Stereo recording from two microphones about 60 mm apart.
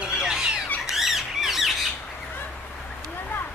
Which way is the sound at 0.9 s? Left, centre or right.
Centre.